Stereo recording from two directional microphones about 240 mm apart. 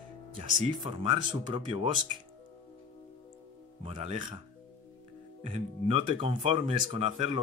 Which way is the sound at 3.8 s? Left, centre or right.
Right.